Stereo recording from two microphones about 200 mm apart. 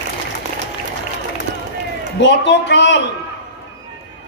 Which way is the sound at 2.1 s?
60° left (ahead or behind).